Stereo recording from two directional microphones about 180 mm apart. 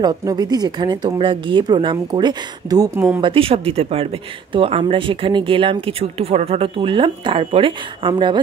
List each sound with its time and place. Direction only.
0.0 s speech: 20° right (ahead or behind)